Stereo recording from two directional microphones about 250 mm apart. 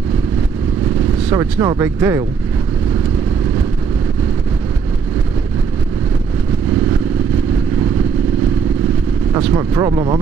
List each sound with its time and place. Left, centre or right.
1.3 s speech: centre
9.3 s speech: centre